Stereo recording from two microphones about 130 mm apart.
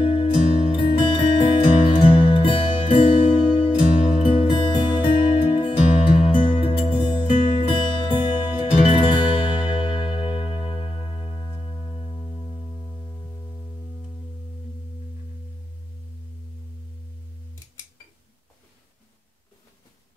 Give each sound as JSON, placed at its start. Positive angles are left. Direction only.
{"t": 0.0, "sound": "music", "side_deg": 45}